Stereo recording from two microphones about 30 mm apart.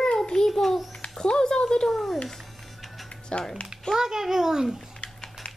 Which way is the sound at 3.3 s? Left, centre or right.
Left.